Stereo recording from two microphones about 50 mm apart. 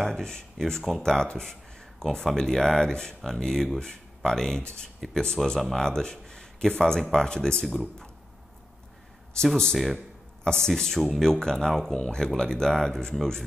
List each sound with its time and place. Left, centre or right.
0.1 s speech: centre
5.8 s a sound: centre
6.8 s speech: centre
9.3 s a man's voice: centre